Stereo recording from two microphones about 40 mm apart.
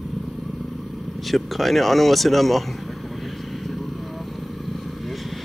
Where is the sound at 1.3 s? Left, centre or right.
Centre.